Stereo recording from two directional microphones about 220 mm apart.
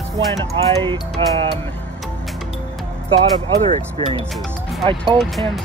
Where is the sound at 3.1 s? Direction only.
25° right (ahead or behind).